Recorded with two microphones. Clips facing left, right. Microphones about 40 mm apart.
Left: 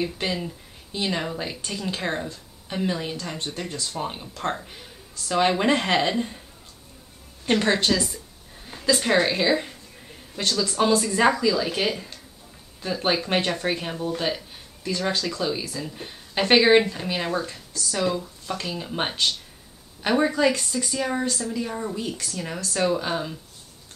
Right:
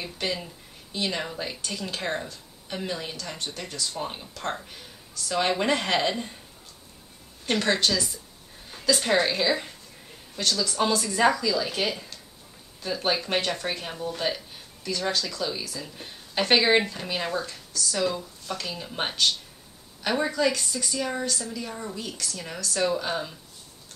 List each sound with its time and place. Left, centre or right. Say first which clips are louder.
0.0 s speech: left 4 dB; centre
3.6 s speech: left 1 dB; left
7.4 s a woman's voice: left 3 dB; centre
14.8 s speech: left 2 dB; left